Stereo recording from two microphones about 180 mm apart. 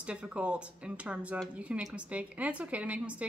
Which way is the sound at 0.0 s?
5° right (ahead or behind).